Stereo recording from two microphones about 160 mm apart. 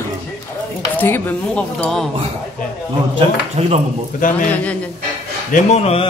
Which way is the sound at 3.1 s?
40° right (ahead or behind).